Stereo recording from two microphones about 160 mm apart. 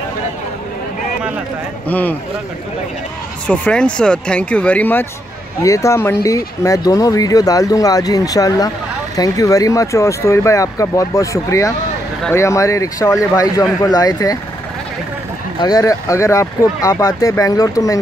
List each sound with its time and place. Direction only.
1.9 s speech: 10° left (ahead or behind)
3.4 s speech: 5° left (ahead or behind); by 14.4 s 20° left (ahead or behind)
15.6 s speech: 20° left (ahead or behind)